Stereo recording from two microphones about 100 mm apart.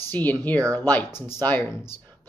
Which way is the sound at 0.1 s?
15° left (ahead or behind).